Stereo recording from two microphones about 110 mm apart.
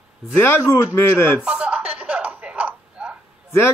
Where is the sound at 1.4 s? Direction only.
10° right (ahead or behind).